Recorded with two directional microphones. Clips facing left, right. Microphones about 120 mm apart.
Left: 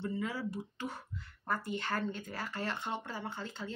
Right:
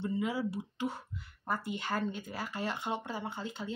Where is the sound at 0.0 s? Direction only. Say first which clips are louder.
Right 3 dB; 15° right (ahead or behind).